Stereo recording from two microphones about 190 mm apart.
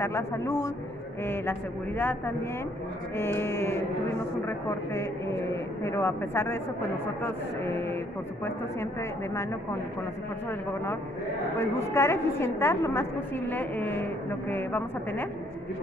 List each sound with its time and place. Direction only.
0.0 s a woman's voice: 15° left (ahead or behind)
9.3 s a woman's voice: 15° left (ahead or behind)
11.5 s a woman's voice: 15° left (ahead or behind)